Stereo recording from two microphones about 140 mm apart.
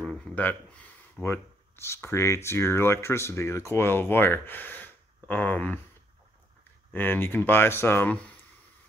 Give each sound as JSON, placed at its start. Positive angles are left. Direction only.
{"t": 0.0, "sound": "speech", "side_deg": 5}
{"t": 6.9, "sound": "speech", "side_deg": 15}